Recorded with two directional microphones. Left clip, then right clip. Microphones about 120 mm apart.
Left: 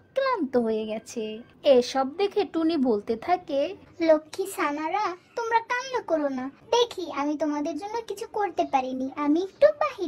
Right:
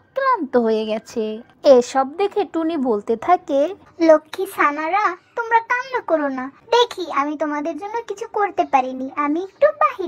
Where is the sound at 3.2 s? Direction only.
30° right (ahead or behind).